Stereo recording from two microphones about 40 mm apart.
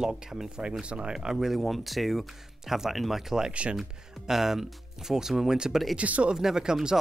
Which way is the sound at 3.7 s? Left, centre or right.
Centre.